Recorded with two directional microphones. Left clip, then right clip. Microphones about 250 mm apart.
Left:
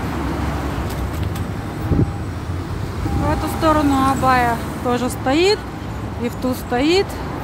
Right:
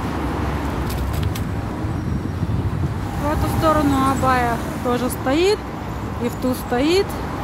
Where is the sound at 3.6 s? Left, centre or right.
Centre.